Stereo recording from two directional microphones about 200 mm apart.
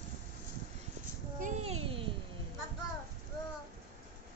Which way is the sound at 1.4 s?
35° right (ahead or behind).